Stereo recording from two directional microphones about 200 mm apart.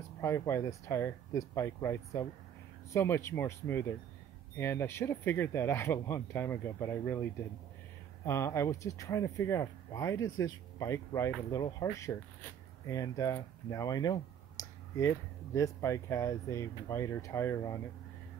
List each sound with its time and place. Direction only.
0.2 s speech: 15° left (ahead or behind)
8.3 s speech: 15° left (ahead or behind)